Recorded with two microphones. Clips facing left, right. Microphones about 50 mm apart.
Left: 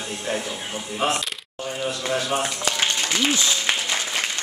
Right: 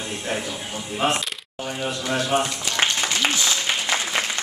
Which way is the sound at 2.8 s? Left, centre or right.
Right.